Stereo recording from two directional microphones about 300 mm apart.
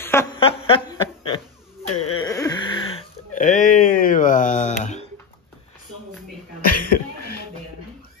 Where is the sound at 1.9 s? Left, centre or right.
Left.